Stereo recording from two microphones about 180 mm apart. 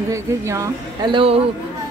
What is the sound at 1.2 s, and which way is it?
Speech, 30° right (ahead or behind).